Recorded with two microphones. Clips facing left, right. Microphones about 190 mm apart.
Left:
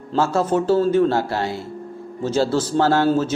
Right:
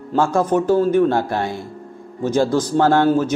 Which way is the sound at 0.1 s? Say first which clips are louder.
Right 2 dB; 15° right (ahead or behind).